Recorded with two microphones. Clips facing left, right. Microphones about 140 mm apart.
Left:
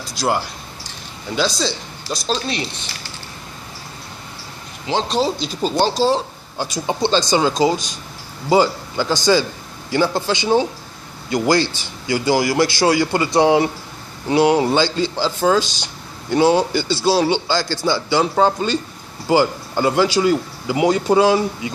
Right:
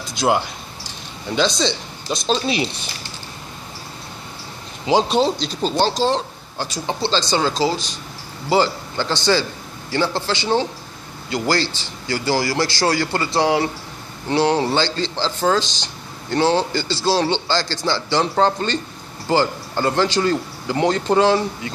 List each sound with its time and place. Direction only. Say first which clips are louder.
0.1 s speech: right 2 dB; centre (ahead or behind)
5.0 s speech: right 1 dB; 5° right (ahead or behind)
5.4 s a man's voice: left 1 dB; 10° left (ahead or behind)